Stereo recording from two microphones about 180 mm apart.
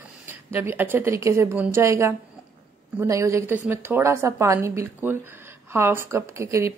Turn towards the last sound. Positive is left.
turn(degrees=-15)  # may be behind; listen again after turning